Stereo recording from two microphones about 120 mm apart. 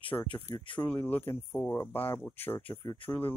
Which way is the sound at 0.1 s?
15° left (ahead or behind).